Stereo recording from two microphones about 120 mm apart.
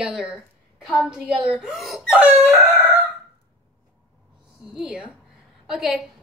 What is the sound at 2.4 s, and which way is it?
Chicken, 20° right (ahead or behind).